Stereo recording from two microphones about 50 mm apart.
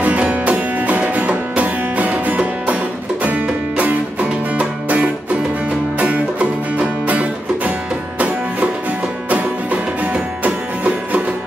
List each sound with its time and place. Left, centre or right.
0.0 s music: right
9.3 s music: right